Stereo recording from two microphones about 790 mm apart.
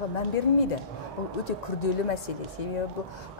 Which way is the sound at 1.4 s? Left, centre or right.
Left.